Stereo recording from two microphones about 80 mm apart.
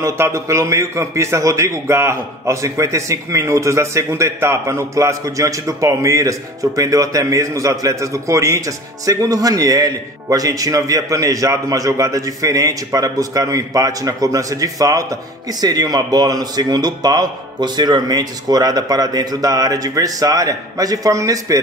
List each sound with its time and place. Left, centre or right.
0.0 s a man's voice: right
15.6 s a man's voice: right